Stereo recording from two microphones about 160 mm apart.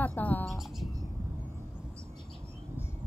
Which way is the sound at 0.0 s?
10° left (ahead or behind).